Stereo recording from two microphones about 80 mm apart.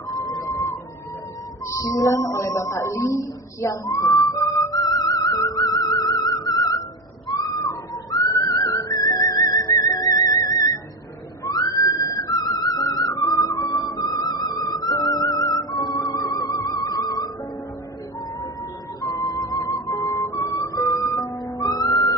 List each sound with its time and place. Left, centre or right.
0.1 s bird: left
1.7 s a sound: left
8.1 s music: left
9.5 s theremin: left
11.5 s music: left
18.9 s music: left
19.7 s music: left
20.1 s music: left